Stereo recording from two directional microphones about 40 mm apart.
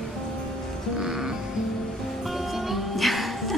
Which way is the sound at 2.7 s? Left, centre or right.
Centre.